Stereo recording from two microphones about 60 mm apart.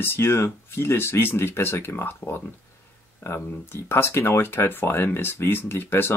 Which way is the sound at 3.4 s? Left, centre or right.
Left.